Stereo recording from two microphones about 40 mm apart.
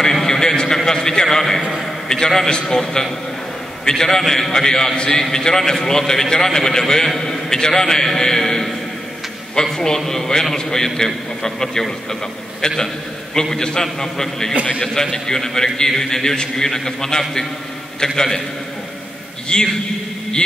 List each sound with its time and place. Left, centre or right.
0.0 s a sound: centre
0.8 s a man's voice: centre
19.5 s a man's voice: centre